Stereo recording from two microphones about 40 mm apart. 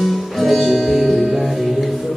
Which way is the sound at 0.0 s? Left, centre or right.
Centre.